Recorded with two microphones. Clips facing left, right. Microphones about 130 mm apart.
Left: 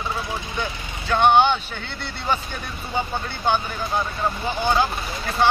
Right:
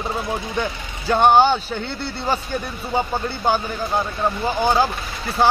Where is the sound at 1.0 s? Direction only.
40° right (ahead or behind).